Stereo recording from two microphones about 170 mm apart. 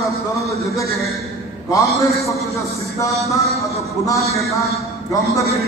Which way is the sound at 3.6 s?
20° left (ahead or behind).